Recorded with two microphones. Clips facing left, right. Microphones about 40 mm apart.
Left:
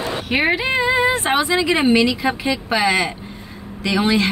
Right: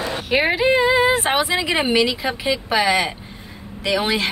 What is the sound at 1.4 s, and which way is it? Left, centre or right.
Speech, centre.